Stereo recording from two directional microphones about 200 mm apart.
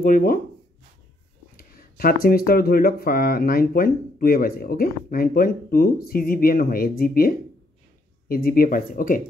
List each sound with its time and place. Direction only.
0.0 s speech: 45° left (ahead or behind)
1.6 s speech: 45° left (ahead or behind)